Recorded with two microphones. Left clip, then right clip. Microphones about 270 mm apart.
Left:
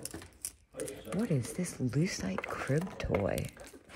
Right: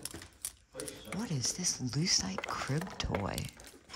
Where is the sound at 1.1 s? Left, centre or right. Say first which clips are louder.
Left 1 dB; centre.